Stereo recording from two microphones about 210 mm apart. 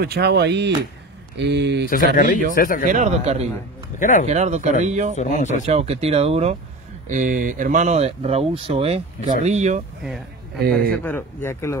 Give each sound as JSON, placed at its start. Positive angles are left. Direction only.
{"t": 0.0, "sound": "speech", "side_deg": -50}
{"t": 1.9, "sound": "speech", "side_deg": 40}
{"t": 2.9, "sound": "speech", "side_deg": -35}
{"t": 4.0, "sound": "speech", "side_deg": 35}
{"t": 4.3, "sound": "speech", "side_deg": -35}
{"t": 5.1, "sound": "speech", "side_deg": 35}
{"t": 5.5, "sound": "speech", "side_deg": -30}
{"t": 10.9, "sound": "speech", "side_deg": 10}